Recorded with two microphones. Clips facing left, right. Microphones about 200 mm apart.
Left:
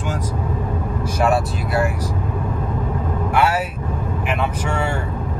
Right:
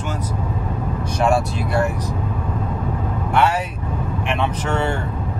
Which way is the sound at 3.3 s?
10° left (ahead or behind).